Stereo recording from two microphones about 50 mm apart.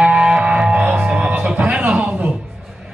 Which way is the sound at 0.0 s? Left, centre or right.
Centre.